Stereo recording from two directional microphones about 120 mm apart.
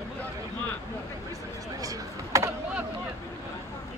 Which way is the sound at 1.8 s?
30° right (ahead or behind).